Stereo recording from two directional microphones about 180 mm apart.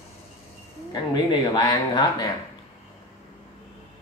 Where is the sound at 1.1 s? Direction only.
25° left (ahead or behind).